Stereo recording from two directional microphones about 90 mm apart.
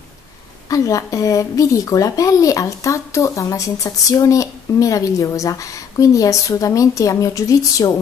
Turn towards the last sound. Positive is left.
turn(degrees=40)  # may be behind; listen again after turning